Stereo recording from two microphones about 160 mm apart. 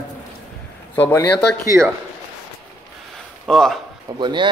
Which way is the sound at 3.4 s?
5° left (ahead or behind).